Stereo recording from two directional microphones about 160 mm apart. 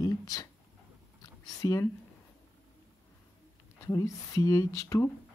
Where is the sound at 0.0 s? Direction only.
25° left (ahead or behind).